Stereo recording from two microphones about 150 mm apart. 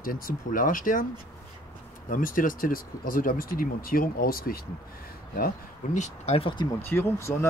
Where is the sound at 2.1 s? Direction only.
65° left (ahead or behind).